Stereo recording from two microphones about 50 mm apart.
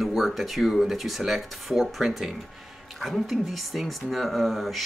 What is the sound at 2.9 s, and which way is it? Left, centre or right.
Speech, centre.